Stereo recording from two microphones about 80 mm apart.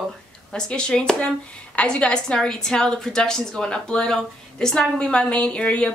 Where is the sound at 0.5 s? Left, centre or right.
Centre.